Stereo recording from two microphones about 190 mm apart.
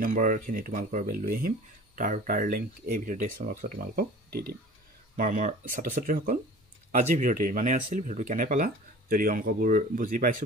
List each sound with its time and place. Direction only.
0.0 s speech: 45° right (ahead or behind)